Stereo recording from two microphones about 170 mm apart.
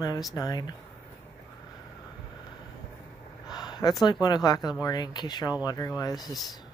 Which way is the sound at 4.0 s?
25° left (ahead or behind).